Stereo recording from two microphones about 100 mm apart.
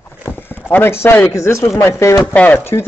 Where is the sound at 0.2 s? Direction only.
20° left (ahead or behind).